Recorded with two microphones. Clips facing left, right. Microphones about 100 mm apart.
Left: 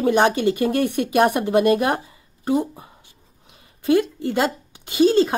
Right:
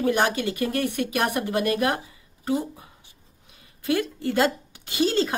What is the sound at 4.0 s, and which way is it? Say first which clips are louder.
Speech: left 1 dB; 15° left (ahead or behind).